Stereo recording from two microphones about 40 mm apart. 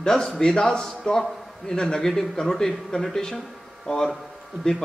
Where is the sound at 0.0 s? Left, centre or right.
Centre.